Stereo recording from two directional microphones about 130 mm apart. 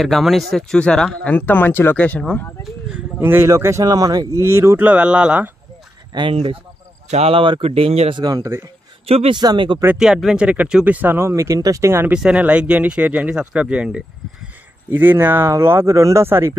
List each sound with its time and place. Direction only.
0.0 s speech: centre (ahead or behind)
3.2 s speech: 15° right (ahead or behind)
6.1 s speech: 45° right (ahead or behind)
8.2 s speech: 30° right (ahead or behind)
9.0 s speech: 50° right (ahead or behind)
9.4 s speech: 35° right (ahead or behind)
9.9 s speech: 5° right (ahead or behind); by 12.1 s 20° right (ahead or behind)
12.1 s speech: 10° right (ahead or behind)